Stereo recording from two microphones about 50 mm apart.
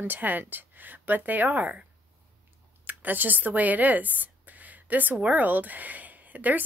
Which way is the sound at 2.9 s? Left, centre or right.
Right.